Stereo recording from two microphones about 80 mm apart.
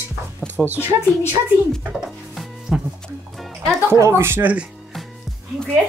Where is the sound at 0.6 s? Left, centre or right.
Right.